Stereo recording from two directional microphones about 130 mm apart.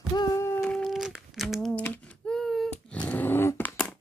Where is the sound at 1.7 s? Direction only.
10° left (ahead or behind).